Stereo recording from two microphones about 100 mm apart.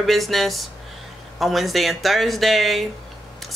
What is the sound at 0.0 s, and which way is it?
Speech, centre (ahead or behind).